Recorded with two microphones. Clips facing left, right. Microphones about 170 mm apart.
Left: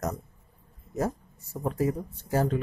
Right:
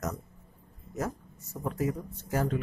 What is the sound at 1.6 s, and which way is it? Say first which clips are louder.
Speech: left 3 dB; 30° left (ahead or behind).